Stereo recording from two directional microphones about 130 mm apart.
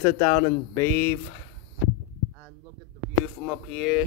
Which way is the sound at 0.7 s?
20° left (ahead or behind).